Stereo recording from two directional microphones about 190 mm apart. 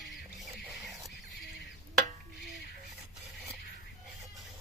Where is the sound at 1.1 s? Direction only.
65° left (ahead or behind).